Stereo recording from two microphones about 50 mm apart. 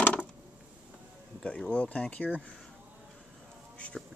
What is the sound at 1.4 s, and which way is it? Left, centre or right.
Speech, left.